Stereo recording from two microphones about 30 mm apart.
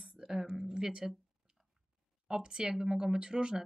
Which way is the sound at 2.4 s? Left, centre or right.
Right.